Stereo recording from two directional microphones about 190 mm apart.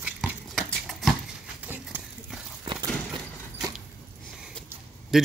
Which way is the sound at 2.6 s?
25° right (ahead or behind).